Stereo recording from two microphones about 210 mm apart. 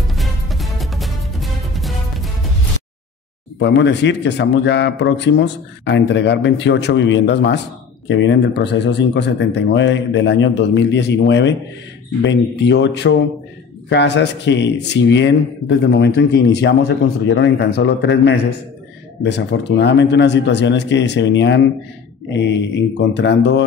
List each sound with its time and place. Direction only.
0.1 s music: centre (ahead or behind)
3.5 s speech: 55° left (ahead or behind)